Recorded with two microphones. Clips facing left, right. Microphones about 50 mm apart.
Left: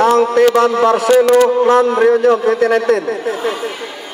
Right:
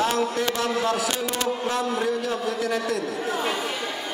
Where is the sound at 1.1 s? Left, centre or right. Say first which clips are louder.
Left 17 dB; left.